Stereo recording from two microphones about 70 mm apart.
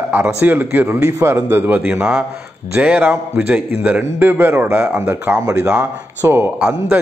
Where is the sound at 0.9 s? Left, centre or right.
Right.